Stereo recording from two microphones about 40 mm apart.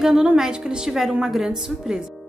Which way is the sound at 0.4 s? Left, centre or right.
Centre.